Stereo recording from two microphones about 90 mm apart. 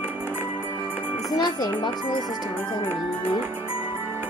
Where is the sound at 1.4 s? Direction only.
50° left (ahead or behind).